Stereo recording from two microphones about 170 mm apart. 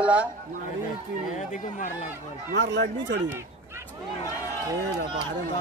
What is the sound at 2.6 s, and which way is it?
Speech, 90° right.